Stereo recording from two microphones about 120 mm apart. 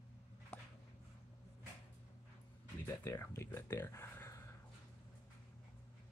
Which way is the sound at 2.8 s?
25° left (ahead or behind).